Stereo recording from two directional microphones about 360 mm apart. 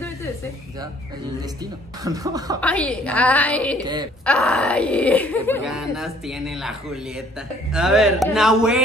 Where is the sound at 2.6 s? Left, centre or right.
Centre.